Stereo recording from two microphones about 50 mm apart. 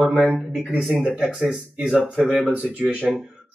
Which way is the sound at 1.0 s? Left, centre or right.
Centre.